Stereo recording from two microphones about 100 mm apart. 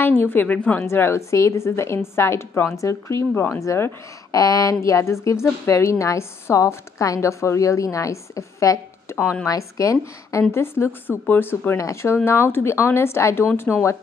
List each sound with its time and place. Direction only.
0.0 s a woman's voice: 20° left (ahead or behind)
0.8 s a woman's voice: 25° left (ahead or behind)